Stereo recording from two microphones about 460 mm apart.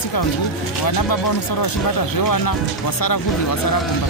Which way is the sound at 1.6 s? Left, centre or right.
Left.